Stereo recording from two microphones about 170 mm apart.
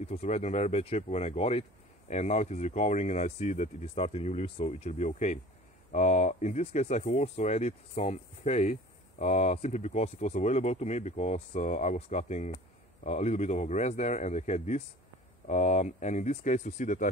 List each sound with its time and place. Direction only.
0.0 s speech: 40° left (ahead or behind)